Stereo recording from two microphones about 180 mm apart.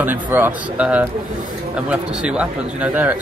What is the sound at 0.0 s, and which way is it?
Speech, 10° right (ahead or behind).